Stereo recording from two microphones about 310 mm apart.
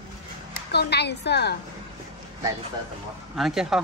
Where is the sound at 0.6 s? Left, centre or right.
Left.